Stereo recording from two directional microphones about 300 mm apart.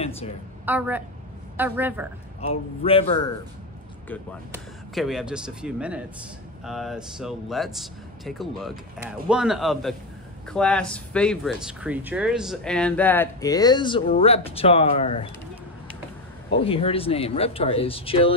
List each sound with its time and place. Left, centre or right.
0.7 s speech: centre
2.4 s a man's voice: centre
4.9 s speech: centre
16.5 s speech: centre